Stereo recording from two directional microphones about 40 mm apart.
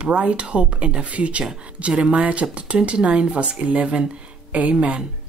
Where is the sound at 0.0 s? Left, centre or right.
Right.